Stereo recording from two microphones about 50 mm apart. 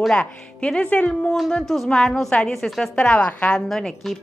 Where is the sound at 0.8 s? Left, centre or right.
Left.